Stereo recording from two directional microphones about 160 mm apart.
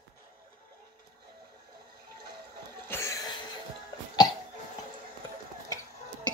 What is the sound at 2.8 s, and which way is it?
Cough, 15° left (ahead or behind).